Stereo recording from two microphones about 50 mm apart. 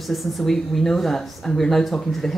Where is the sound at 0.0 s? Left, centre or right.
Centre.